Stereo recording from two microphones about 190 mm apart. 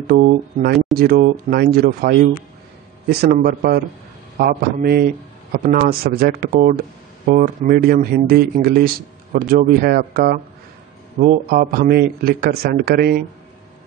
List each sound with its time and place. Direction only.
0.0 s a man's voice: 55° right (ahead or behind)